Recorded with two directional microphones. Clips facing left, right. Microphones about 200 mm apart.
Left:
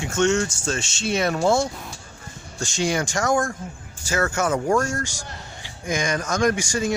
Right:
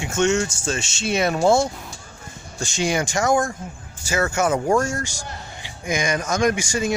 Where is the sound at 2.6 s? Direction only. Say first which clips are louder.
Right 1 dB; 5° right (ahead or behind).